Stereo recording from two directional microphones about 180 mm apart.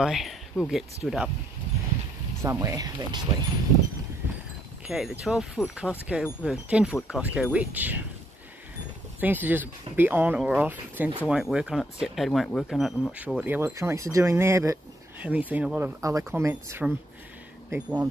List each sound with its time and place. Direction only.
0.0 s speech: centre (ahead or behind)
2.4 s speech: 15° right (ahead or behind)
4.8 s speech: 5° right (ahead or behind)
9.2 s speech: 10° right (ahead or behind)
16.0 s speech: 20° right (ahead or behind)